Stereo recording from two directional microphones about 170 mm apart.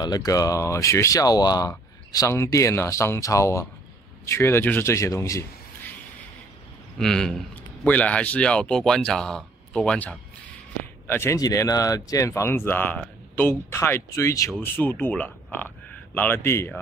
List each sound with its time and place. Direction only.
0.0 s speech: 20° left (ahead or behind)
7.0 s a man's voice: 5° left (ahead or behind)